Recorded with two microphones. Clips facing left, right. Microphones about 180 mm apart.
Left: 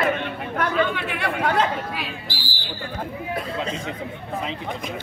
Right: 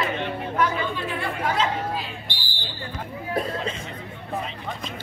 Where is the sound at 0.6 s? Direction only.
75° left (ahead or behind).